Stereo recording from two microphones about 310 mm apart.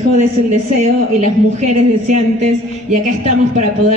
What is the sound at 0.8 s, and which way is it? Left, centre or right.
A woman's voice, right.